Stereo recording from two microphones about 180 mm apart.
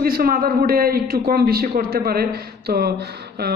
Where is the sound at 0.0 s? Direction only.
55° right (ahead or behind).